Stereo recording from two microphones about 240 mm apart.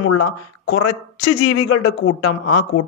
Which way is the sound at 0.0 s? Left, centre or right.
Left.